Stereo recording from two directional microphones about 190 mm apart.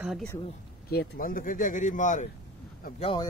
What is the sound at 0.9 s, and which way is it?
Speech, 55° left (ahead or behind).